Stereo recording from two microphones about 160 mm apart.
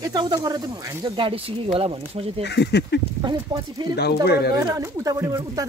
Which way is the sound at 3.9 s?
90° left.